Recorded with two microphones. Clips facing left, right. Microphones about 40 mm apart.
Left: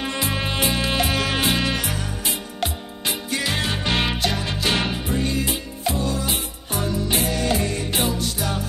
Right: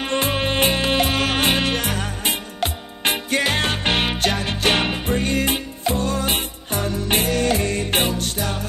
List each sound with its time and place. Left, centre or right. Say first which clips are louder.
0.0 s music: right 4 dB; right